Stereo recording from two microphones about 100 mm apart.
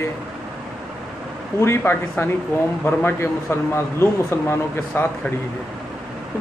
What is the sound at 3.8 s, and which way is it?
Speech, 25° left (ahead or behind).